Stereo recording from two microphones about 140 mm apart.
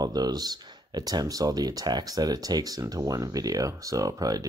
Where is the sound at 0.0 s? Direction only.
30° right (ahead or behind).